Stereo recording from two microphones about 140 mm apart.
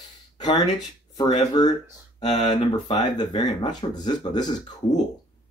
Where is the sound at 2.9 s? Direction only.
30° left (ahead or behind).